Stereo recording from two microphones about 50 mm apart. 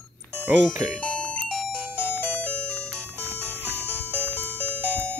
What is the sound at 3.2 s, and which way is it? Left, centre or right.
Music, right.